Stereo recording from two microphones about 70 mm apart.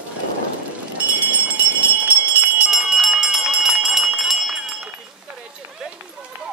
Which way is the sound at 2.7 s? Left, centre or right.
Centre.